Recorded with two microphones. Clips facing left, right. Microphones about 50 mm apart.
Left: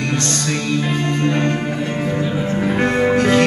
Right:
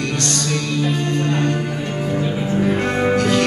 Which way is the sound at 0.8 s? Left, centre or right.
Left.